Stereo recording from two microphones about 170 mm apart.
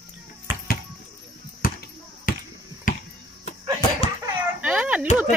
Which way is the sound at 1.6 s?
60° left (ahead or behind).